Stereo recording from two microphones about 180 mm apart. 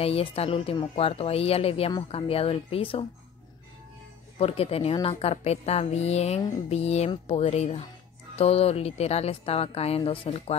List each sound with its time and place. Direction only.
0.0 s speech: 35° left (ahead or behind)
4.4 s speech: 35° left (ahead or behind)